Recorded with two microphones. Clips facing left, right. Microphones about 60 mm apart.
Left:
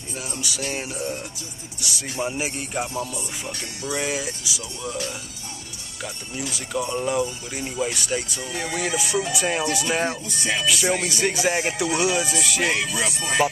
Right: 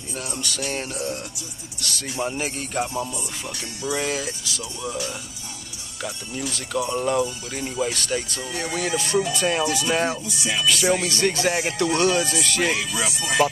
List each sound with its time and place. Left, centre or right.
0.1 s speech: centre
2.9 s speech: right
3.9 s speech: centre
6.9 s speech: centre
10.2 s speech: left
10.7 s speech: centre
13.0 s speech: left